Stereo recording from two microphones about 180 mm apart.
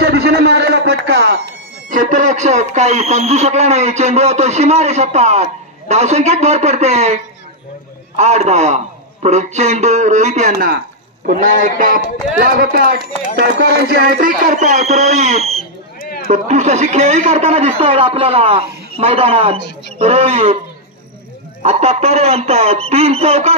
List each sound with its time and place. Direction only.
0.0 s a man's voice: 65° right (ahead or behind); by 7.2 s 40° right (ahead or behind)
8.2 s a man's voice: 40° right (ahead or behind)
16.0 s a sound: 55° left (ahead or behind)
16.3 s a man's voice: 40° right (ahead or behind)
21.6 s a man's voice: 35° right (ahead or behind)